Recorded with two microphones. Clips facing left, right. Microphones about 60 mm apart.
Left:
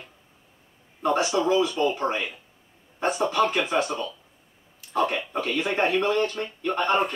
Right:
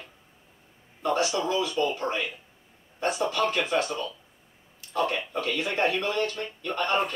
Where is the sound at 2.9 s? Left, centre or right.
Left.